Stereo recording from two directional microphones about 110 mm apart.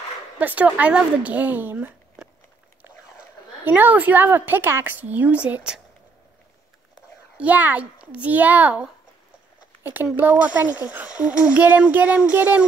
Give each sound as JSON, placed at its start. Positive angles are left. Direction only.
{"t": 0.4, "sound": "speech", "side_deg": -15}
{"t": 2.2, "sound": "a sound", "side_deg": -5}
{"t": 3.6, "sound": "speech", "side_deg": -15}
{"t": 7.3, "sound": "speech", "side_deg": -15}
{"t": 10.1, "sound": "speech", "side_deg": -15}